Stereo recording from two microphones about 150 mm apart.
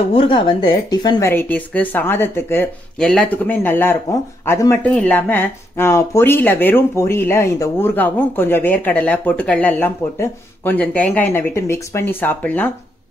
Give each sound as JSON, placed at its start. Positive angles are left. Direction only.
{"t": 0.1, "sound": "speech", "side_deg": 35}
{"t": 1.3, "sound": "speech", "side_deg": 10}